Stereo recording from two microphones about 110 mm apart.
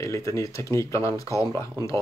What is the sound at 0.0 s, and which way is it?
Speech, 30° left (ahead or behind).